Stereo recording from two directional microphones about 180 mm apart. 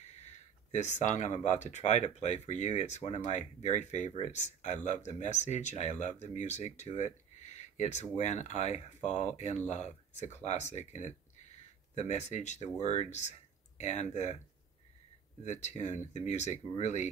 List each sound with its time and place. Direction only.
0.0 s speech: 40° left (ahead or behind)
15.4 s speech: 40° left (ahead or behind)